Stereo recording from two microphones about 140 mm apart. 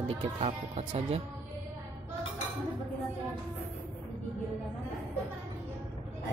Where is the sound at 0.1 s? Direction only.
40° right (ahead or behind).